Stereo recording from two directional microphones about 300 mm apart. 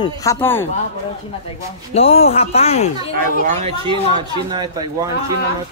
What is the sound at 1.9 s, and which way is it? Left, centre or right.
Speech, centre.